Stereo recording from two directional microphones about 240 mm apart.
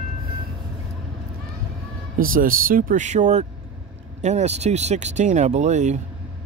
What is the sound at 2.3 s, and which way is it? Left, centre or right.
Speech, right.